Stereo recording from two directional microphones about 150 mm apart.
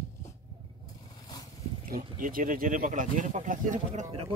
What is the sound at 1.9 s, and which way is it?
Speech, 65° right (ahead or behind).